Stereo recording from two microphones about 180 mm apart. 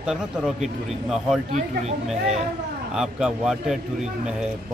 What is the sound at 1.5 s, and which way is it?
Speech, 35° right (ahead or behind).